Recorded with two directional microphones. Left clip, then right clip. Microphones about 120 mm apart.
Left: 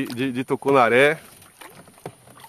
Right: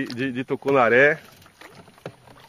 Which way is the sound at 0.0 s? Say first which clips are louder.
Left 1 dB; 30° left (ahead or behind).